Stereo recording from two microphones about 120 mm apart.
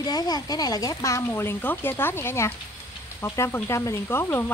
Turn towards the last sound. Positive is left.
turn(degrees=20)  # may be behind; listen again after turning